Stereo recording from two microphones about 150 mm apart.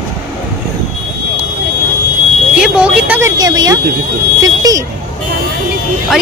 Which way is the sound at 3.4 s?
25° right (ahead or behind).